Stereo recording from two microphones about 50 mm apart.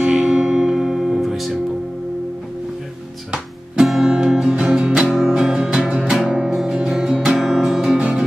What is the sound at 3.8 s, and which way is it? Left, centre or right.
Music, centre.